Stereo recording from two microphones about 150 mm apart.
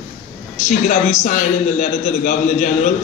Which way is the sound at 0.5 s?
55° left (ahead or behind).